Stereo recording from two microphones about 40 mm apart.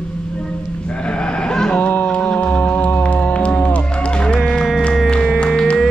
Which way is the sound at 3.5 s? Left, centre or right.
Left.